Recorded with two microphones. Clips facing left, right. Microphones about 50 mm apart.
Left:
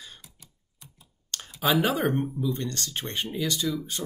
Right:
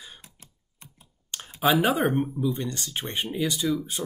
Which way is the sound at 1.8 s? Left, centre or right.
Centre.